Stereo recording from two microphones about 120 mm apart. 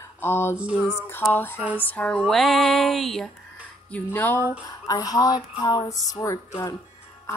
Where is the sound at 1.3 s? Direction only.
15° left (ahead or behind).